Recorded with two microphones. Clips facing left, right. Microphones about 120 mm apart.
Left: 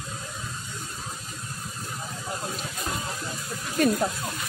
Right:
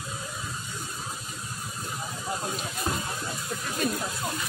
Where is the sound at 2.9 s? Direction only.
25° right (ahead or behind).